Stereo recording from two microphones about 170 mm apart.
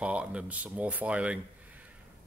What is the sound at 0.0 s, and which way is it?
Speech, 5° right (ahead or behind).